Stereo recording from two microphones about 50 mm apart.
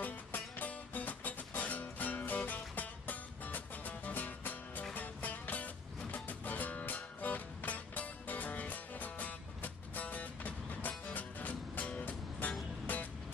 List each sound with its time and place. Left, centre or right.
0.0 s music: left